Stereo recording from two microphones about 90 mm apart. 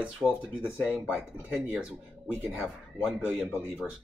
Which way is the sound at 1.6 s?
5° right (ahead or behind).